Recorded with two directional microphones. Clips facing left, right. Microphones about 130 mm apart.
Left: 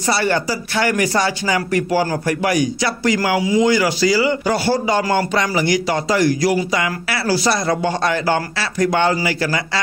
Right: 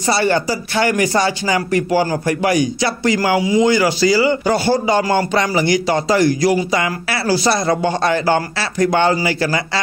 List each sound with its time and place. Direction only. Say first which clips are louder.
0.0 s speech: right 2 dB; 25° right (ahead or behind)